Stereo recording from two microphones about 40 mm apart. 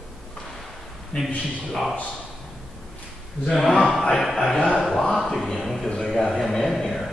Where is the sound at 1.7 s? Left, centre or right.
Centre.